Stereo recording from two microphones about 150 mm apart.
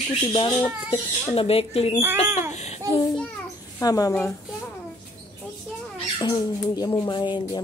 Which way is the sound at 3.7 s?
25° left (ahead or behind).